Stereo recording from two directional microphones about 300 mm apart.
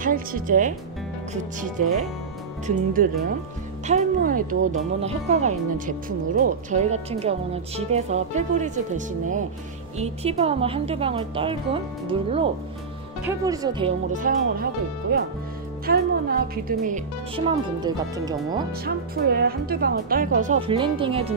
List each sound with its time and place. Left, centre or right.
0.0 s speech: right
2.6 s speech: right
17.5 s speech: centre
18.7 s speech: right